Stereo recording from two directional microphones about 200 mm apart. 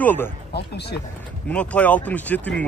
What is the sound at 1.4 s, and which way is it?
Speech, 5° left (ahead or behind).